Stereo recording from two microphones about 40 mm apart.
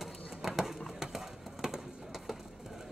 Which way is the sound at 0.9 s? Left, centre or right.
Centre.